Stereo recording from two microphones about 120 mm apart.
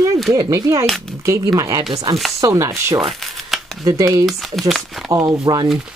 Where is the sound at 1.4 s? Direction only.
35° right (ahead or behind).